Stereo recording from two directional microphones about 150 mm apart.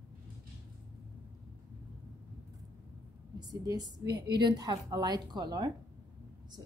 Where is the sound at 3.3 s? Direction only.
25° right (ahead or behind).